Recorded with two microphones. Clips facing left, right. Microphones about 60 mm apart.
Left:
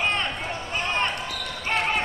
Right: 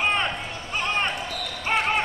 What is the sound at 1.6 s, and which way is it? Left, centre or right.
Basketball bounce, centre.